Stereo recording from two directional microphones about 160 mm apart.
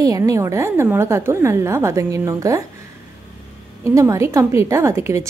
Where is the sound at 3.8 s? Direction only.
20° right (ahead or behind).